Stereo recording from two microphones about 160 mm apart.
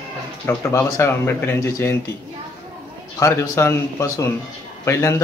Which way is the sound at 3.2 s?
20° left (ahead or behind).